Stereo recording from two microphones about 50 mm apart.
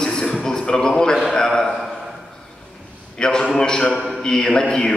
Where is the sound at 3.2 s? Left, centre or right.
Centre.